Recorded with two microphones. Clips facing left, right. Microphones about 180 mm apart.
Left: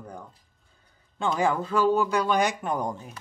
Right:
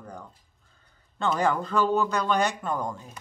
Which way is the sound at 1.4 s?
10° left (ahead or behind).